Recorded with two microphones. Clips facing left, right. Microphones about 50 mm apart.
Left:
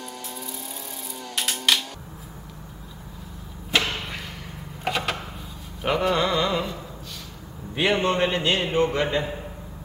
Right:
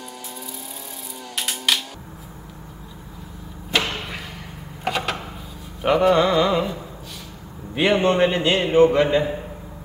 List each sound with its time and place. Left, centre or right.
1.3 s music: centre
3.7 s a sound: centre
5.8 s a man's voice: centre